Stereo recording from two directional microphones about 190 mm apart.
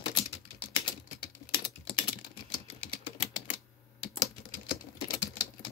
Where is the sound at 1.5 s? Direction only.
25° left (ahead or behind).